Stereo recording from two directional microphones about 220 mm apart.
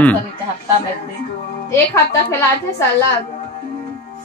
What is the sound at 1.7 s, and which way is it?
Speech, 10° left (ahead or behind).